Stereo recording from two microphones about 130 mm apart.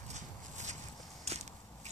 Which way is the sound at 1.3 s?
55° right (ahead or behind).